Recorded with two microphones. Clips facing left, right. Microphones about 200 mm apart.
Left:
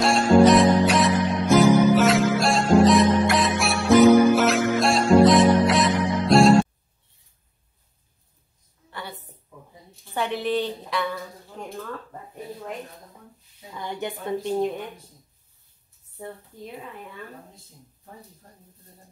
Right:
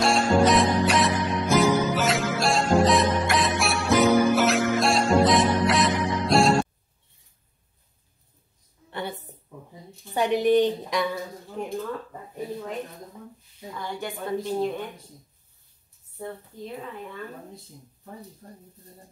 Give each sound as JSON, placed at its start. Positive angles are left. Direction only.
{"t": 0.0, "sound": "music", "side_deg": 0}
{"t": 10.1, "sound": "a sound", "side_deg": -15}
{"t": 13.7, "sound": "a woman's voice", "side_deg": 20}